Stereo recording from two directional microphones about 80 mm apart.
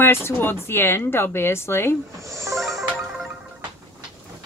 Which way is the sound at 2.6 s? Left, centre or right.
Centre.